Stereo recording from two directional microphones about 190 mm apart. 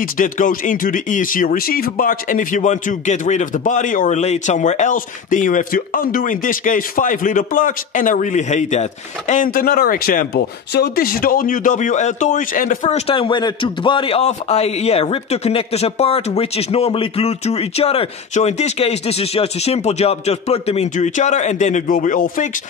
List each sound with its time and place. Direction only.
0.0 s speech: 45° left (ahead or behind)